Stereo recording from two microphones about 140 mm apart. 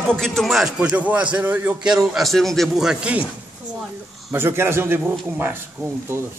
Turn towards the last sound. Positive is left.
turn(degrees=-15)  # may be behind; listen again after turning